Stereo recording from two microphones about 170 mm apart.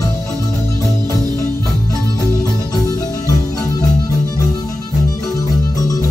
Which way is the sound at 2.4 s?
20° left (ahead or behind).